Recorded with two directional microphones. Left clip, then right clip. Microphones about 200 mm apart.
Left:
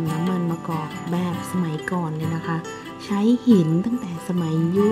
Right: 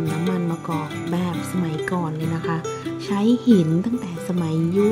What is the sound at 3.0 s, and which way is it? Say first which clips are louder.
Speech: even; 5° right (ahead or behind).